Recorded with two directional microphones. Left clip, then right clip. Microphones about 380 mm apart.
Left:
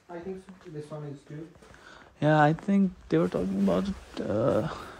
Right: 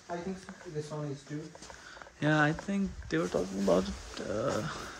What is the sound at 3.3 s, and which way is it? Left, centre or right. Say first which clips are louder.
Speech: even; left.